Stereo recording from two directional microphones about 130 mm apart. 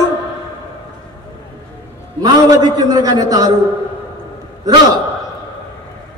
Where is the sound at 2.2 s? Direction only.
30° right (ahead or behind).